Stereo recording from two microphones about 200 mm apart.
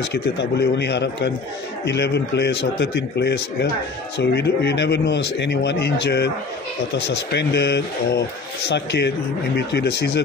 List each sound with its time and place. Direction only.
0.1 s a man's voice: 60° left (ahead or behind)
7.3 s a man's voice: 55° left (ahead or behind)